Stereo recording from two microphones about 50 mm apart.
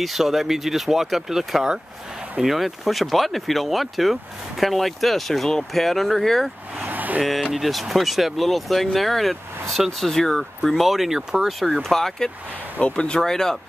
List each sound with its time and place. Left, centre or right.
0.0 s speech: centre
6.8 s vehicle: right
7.5 s speech: centre
11.6 s speech: centre
12.9 s speech: centre
13.2 s speech: centre